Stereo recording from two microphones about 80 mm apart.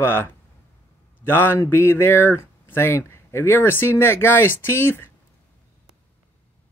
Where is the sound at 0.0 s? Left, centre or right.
Left.